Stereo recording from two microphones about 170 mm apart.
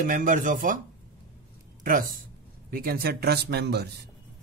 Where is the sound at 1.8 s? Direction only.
55° right (ahead or behind); by 4.1 s 70° right (ahead or behind).